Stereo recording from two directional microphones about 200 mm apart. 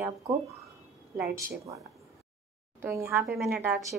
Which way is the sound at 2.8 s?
10° right (ahead or behind).